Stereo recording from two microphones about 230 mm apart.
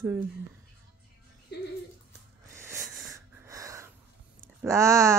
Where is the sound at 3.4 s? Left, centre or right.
Centre.